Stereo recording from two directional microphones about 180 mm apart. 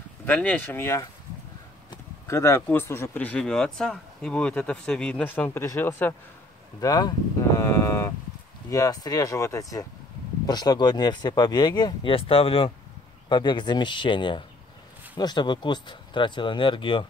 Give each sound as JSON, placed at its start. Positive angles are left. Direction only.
{"t": 0.3, "sound": "speech", "side_deg": 10}
{"t": 6.8, "sound": "speech", "side_deg": 20}